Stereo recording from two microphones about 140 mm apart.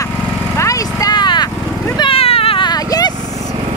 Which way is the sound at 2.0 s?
40° left (ahead or behind).